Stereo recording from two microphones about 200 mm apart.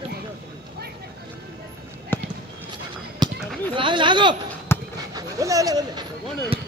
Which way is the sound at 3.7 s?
25° right (ahead or behind).